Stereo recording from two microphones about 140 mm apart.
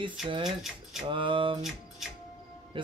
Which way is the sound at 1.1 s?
35° right (ahead or behind).